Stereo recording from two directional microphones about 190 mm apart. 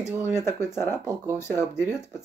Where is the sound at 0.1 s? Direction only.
10° right (ahead or behind).